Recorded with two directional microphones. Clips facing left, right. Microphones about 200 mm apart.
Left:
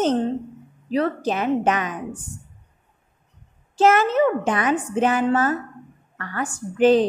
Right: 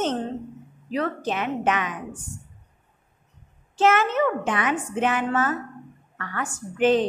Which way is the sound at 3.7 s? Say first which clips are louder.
Left 3 dB; 40° left (ahead or behind).